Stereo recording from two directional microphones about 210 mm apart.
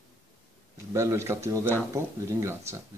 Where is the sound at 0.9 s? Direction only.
15° right (ahead or behind).